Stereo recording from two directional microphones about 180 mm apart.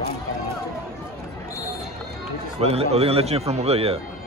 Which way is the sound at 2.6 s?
35° right (ahead or behind).